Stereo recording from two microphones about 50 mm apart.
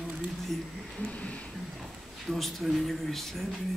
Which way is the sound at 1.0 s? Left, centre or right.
Left.